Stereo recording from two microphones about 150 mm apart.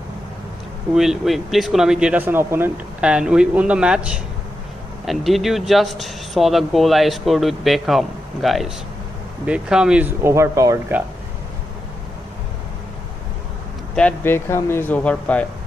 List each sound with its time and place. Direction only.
0.9 s speech: centre (ahead or behind); by 11.0 s 20° right (ahead or behind)
13.9 s speech: 10° left (ahead or behind)